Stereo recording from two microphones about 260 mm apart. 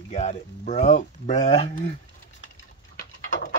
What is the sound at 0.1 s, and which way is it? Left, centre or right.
Speech, left.